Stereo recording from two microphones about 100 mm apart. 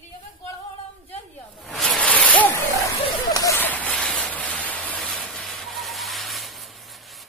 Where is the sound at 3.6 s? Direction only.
15° left (ahead or behind); by 6.5 s centre (ahead or behind).